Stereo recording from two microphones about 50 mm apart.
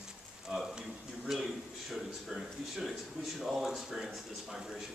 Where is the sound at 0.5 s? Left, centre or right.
Centre.